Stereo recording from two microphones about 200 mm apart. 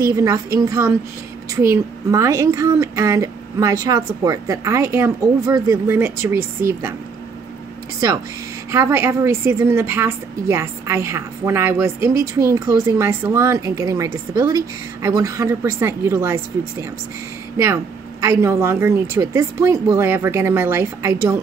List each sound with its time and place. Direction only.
0.0 s a woman's voice: 15° right (ahead or behind)
8.7 s a woman's voice: 10° right (ahead or behind)
18.2 s a woman's voice: 15° right (ahead or behind)